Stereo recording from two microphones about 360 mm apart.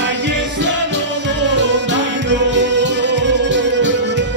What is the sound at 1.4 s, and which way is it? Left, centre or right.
Music, right.